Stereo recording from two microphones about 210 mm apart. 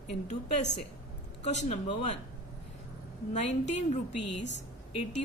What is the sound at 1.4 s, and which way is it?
Speech, 35° left (ahead or behind).